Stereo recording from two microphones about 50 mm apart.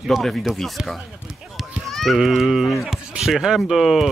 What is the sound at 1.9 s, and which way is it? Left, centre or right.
Speech, centre.